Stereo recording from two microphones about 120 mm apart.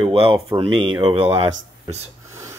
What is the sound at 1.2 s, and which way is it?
Speech, 50° right (ahead or behind).